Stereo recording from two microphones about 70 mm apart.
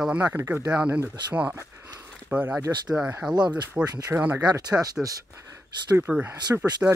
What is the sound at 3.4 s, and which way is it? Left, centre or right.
Speech, right.